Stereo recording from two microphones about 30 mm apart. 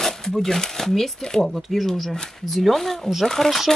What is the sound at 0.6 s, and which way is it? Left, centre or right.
Speech, centre.